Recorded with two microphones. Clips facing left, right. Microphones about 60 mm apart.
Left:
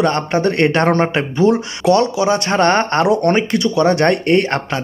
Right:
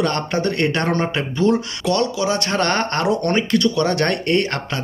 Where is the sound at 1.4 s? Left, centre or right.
Centre.